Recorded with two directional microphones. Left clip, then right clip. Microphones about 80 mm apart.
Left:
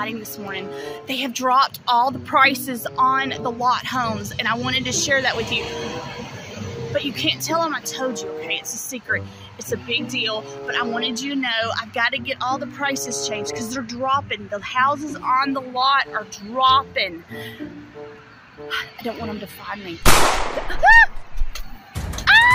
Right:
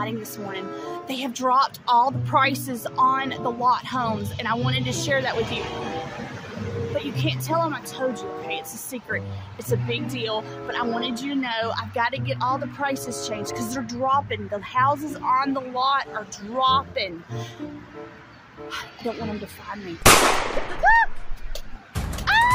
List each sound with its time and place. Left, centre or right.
0.7 s speech: right; by 2.5 s centre
2.6 s a woman's voice: right
6.9 s speech: centre
9.8 s a woman's voice: right
13.4 s a woman's voice: right
15.2 s speech: right
19.0 s speech: centre
22.2 s music: right